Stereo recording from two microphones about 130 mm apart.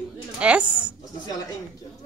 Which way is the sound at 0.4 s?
10° right (ahead or behind).